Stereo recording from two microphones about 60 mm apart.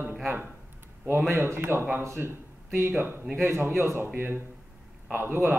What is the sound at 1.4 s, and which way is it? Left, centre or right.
Speech, right.